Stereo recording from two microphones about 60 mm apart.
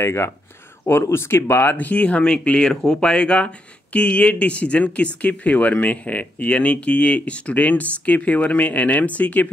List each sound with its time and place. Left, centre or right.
0.0 s speech: left